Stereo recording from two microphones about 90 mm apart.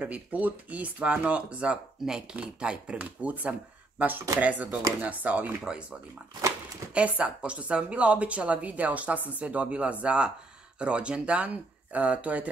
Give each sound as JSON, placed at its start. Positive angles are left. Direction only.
{"t": 0.0, "sound": "speech", "side_deg": -15}
{"t": 6.9, "sound": "speech", "side_deg": -15}